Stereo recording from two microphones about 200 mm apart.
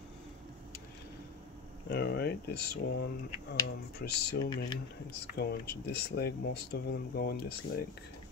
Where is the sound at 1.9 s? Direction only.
55° left (ahead or behind).